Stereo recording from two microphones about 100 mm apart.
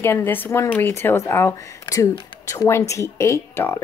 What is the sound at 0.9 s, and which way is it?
Speech, 25° left (ahead or behind).